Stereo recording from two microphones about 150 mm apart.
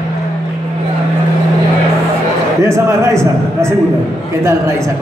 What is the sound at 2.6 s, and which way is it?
Speech, 20° right (ahead or behind).